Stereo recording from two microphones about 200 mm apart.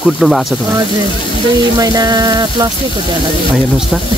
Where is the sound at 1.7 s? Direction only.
20° right (ahead or behind).